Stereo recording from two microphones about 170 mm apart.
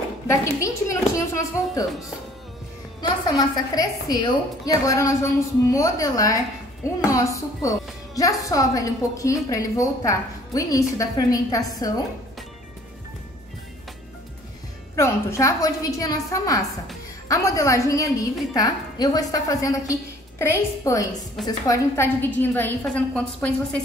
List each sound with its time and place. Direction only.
0.3 s a woman's voice: 15° left (ahead or behind)
3.0 s a woman's voice: 20° left (ahead or behind)
15.0 s a woman's voice: 15° left (ahead or behind)